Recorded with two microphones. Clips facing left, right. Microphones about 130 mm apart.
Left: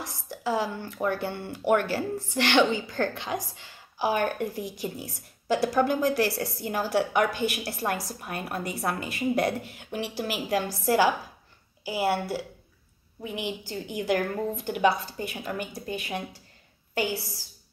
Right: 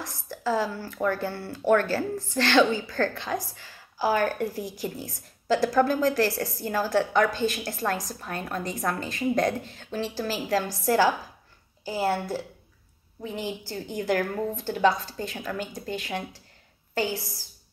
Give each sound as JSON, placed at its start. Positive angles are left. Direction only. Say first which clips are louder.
{"t": 0.0, "sound": "a woman's voice", "louder": "right 1 dB", "side_deg": 15}